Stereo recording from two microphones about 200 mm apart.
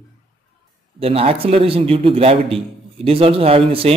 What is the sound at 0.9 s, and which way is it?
A man's voice, 30° right (ahead or behind).